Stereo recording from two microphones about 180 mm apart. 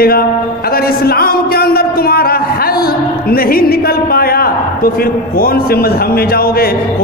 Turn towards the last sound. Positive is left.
turn(degrees=55)  # may be behind; listen again after turning